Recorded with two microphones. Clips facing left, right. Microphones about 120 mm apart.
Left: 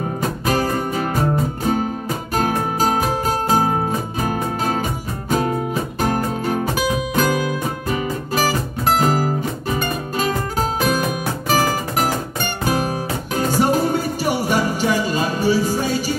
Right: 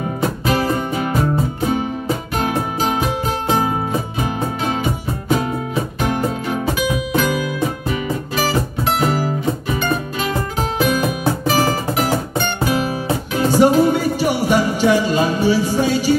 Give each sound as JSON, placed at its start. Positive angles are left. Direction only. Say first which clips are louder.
{"t": 0.5, "sound": "music", "louder": "right 1 dB", "side_deg": 40}
{"t": 2.3, "sound": "music", "louder": "left 3 dB", "side_deg": 40}
{"t": 5.9, "sound": "music", "louder": "even", "side_deg": 40}